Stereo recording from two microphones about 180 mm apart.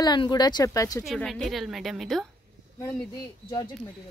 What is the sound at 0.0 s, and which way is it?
Speech, 25° left (ahead or behind).